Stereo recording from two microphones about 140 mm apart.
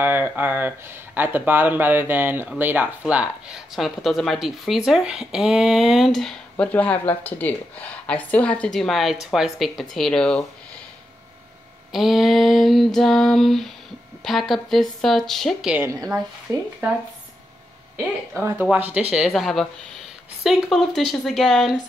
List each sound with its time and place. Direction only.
0.0 s speech: 15° right (ahead or behind); by 10.4 s 5° left (ahead or behind)
11.9 s speech: centre (ahead or behind)
15.7 s speech: 15° right (ahead or behind)
17.9 s speech: 15° right (ahead or behind)